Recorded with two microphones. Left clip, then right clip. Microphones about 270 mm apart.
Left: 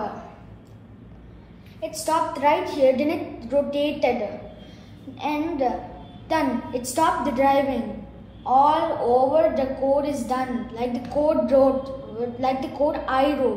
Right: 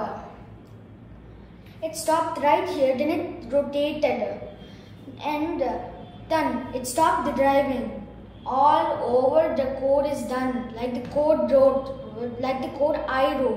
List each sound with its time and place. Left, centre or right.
1.8 s a woman's voice: left
5.1 s a woman's voice: left